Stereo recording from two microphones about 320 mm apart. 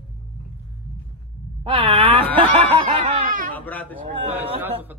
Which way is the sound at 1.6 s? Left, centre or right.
Centre.